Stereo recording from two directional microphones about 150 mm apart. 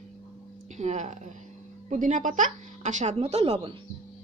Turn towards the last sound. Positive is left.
turn(degrees=-40)  # may be behind; listen again after turning